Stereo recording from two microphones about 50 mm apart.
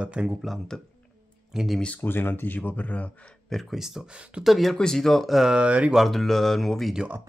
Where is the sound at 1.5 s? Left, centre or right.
Centre.